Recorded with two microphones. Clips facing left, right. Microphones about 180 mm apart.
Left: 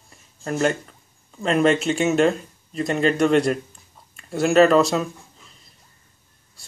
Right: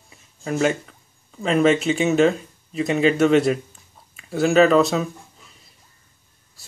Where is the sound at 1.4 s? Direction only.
Centre (ahead or behind).